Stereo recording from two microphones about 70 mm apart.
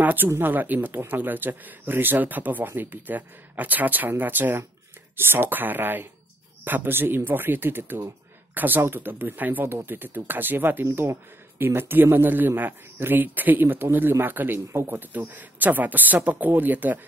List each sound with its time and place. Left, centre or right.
0.0 s a man's voice: right